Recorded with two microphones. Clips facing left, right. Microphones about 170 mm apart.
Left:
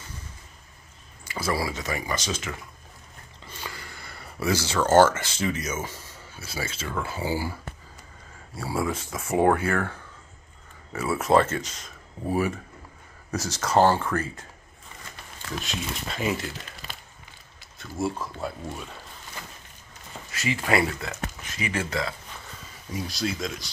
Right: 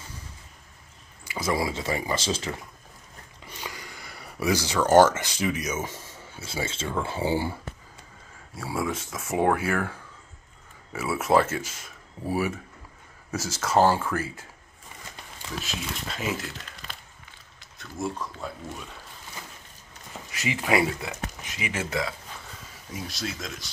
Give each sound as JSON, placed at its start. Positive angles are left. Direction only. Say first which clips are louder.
{"t": 1.2, "sound": "speech", "louder": "right 1 dB", "side_deg": -15}
{"t": 3.4, "sound": "speech", "louder": "even", "side_deg": -15}
{"t": 8.5, "sound": "speech", "louder": "left 1 dB", "side_deg": 0}
{"t": 15.6, "sound": "speech", "louder": "left 2 dB", "side_deg": 0}
{"t": 20.2, "sound": "speech", "louder": "even", "side_deg": -15}